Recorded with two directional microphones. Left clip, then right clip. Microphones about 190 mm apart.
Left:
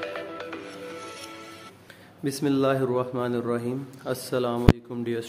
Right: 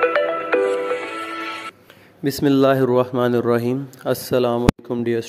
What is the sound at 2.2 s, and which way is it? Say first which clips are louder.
A man's voice: right 8 dB; 35° right (ahead or behind).